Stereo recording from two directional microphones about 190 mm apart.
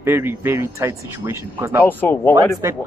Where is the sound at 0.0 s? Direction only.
10° right (ahead or behind).